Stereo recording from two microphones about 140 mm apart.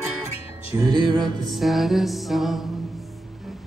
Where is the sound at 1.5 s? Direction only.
Centre (ahead or behind).